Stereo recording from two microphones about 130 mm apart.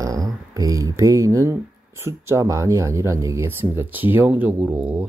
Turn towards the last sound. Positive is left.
turn(degrees=-15)  # may be behind; listen again after turning